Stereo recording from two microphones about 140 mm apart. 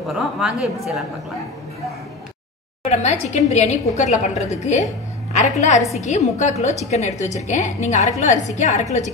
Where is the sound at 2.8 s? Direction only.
55° left (ahead or behind).